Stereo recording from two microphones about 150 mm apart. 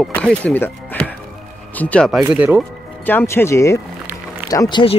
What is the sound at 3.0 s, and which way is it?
Speech, 15° left (ahead or behind).